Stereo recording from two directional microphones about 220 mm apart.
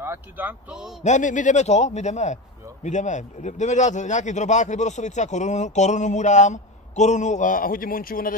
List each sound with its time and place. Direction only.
0.0 s speech: 10° right (ahead or behind)
1.0 s speech: 35° left (ahead or behind)